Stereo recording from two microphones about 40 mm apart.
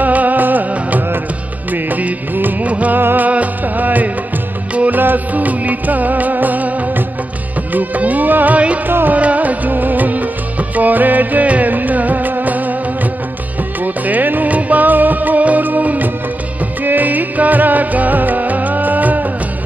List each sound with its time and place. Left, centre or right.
0.0 s music: right
2.6 s music: right
3.0 s music: right
3.3 s music: right
9.2 s music: right
10.8 s music of bollywood: right
13.8 s music: right